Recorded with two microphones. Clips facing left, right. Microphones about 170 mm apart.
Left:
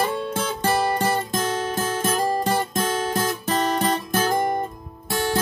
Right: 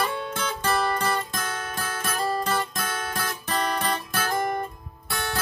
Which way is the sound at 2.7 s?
30° left (ahead or behind).